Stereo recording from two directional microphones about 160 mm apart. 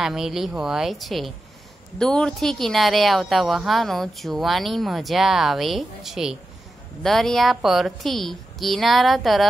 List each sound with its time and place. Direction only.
0.0 s speech: centre (ahead or behind)